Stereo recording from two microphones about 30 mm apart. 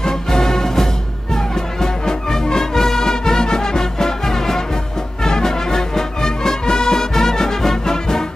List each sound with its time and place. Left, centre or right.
0.0 s music: centre